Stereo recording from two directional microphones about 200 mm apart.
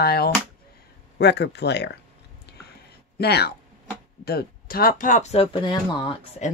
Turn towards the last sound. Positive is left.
turn(degrees=25)  # may be behind; listen again after turning